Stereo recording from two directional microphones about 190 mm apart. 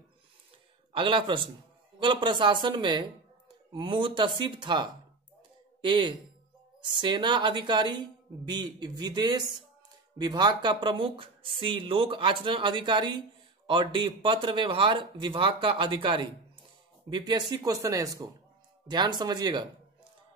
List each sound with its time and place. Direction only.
0.9 s a woman's voice: 25° right (ahead or behind)